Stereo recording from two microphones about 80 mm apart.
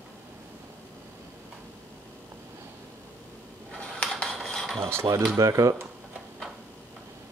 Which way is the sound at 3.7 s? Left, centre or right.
Centre.